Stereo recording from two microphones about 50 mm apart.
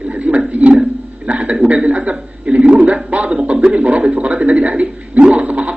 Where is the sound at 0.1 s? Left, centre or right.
Right.